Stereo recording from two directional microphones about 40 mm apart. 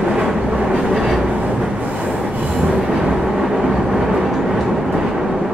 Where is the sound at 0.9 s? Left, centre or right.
Centre.